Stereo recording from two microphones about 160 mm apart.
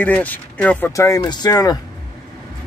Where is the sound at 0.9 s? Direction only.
20° left (ahead or behind).